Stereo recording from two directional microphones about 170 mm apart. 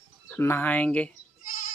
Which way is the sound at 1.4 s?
55° left (ahead or behind).